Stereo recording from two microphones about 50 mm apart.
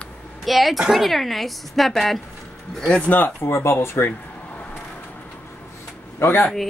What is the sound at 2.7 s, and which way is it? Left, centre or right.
Speech, centre.